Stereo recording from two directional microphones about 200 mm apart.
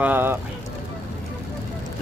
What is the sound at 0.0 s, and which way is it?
Clip-clop, 10° right (ahead or behind).